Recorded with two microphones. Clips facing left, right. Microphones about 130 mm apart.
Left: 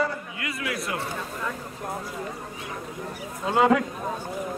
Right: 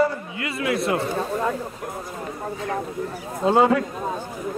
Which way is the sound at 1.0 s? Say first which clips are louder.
Right 8 dB; 40° right (ahead or behind).